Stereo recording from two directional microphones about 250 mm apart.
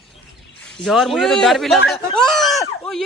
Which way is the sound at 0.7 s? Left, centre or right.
Centre.